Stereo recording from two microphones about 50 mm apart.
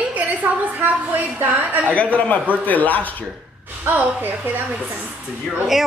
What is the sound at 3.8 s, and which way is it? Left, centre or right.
Speech, right.